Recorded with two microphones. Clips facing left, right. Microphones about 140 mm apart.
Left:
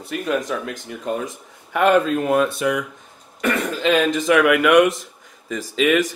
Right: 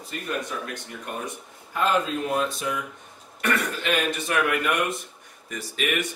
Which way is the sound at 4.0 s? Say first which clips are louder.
Left 9 dB; 90° left.